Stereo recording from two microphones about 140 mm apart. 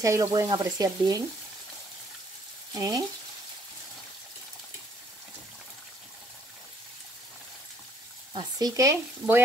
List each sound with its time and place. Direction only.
0.0 s speech: 25° right (ahead or behind)
2.7 s frying: 25° right (ahead or behind)
8.4 s speech: 30° right (ahead or behind)